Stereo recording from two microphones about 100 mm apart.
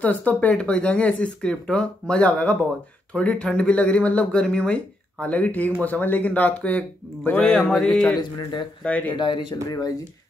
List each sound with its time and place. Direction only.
0.0 s speech: 15° left (ahead or behind)
7.4 s music: 5° left (ahead or behind)
8.2 s speech: 45° left (ahead or behind)
8.8 s speech: 15° left (ahead or behind)
9.1 s speech: 50° left (ahead or behind)